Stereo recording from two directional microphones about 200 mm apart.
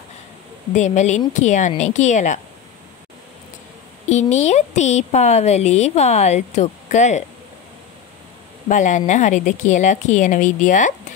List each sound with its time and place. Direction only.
0.7 s a woman's voice: 35° left (ahead or behind)
4.1 s a woman's voice: 35° left (ahead or behind)
8.6 s a woman's voice: 40° left (ahead or behind)